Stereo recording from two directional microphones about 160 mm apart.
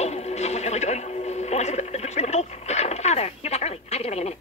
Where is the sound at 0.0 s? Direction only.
45° left (ahead or behind).